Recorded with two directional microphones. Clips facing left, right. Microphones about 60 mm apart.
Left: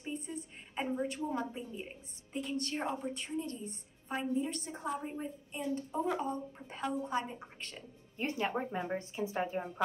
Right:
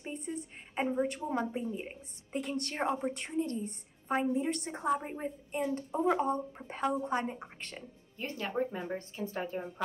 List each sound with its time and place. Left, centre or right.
0.0 s a sound: right
2.3 s a woman's voice: right
8.2 s a woman's voice: left